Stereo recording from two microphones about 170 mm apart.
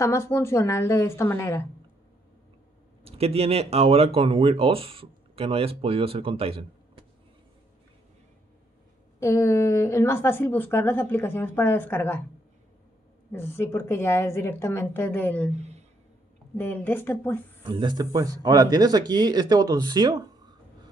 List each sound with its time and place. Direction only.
0.0 s a woman's voice: 15° left (ahead or behind)
3.0 s speech: 35° right (ahead or behind)
9.2 s a woman's voice: 15° left (ahead or behind)
13.3 s a woman's voice: 15° left (ahead or behind)
15.5 s speech: 40° right (ahead or behind)
16.5 s a woman's voice: 10° left (ahead or behind)
17.6 s speech: 25° right (ahead or behind)